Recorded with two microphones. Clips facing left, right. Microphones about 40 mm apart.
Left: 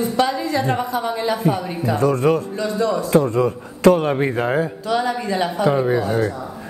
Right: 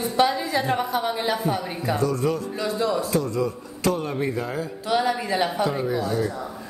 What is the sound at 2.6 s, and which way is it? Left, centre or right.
Speech, centre.